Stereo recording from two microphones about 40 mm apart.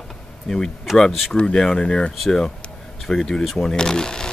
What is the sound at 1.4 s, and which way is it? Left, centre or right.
Speech, centre.